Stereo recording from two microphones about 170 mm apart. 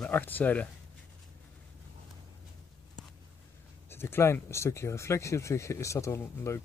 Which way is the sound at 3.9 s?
15° left (ahead or behind).